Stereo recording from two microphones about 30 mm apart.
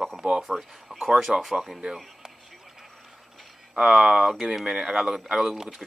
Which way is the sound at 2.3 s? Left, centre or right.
Centre.